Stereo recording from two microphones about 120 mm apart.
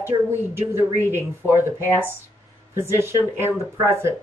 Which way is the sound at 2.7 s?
20° right (ahead or behind).